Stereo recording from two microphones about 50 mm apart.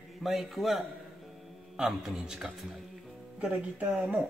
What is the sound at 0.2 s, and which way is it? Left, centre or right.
A man's voice, centre.